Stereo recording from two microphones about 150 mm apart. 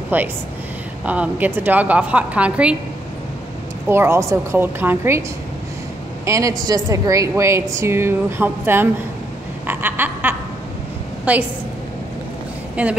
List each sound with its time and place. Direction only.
0.1 s a woman's voice: 10° right (ahead or behind)
3.9 s a woman's voice: 15° right (ahead or behind)
6.2 s a woman's voice: 20° right (ahead or behind)
9.7 s a sound: 15° right (ahead or behind)
11.3 s a woman's voice: 10° right (ahead or behind)
12.8 s a woman's voice: 10° right (ahead or behind)